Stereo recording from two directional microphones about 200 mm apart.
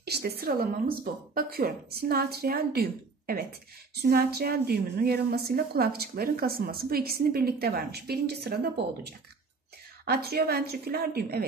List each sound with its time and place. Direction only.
0.0 s a woman's voice: 55° right (ahead or behind)